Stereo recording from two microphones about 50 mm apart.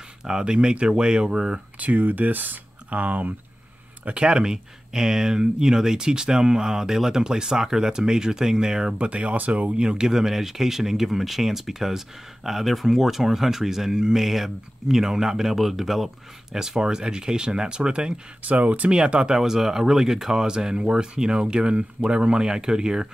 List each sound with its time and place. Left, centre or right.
0.2 s speech: centre
1.8 s speech: right
4.0 s speech: right
18.4 s speech: right
18.9 s speech: centre